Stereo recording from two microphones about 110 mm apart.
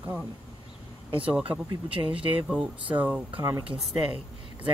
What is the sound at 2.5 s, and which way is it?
Speech, 10° right (ahead or behind).